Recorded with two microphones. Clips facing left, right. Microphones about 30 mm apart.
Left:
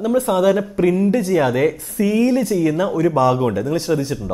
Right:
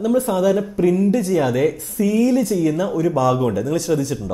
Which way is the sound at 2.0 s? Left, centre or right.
Left.